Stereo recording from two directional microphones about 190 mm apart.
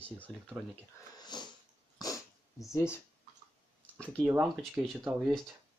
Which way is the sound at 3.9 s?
5° left (ahead or behind).